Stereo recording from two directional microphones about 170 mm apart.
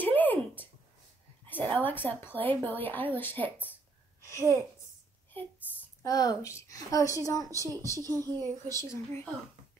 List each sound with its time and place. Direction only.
0.0 s a sound: 10° left (ahead or behind)
1.5 s a sound: 10° left (ahead or behind)
2.3 s a woman's voice: 10° left (ahead or behind)
6.0 s a woman's voice: 20° left (ahead or behind)
7.6 s speech: 20° right (ahead or behind)
8.9 s a woman's voice: 15° left (ahead or behind)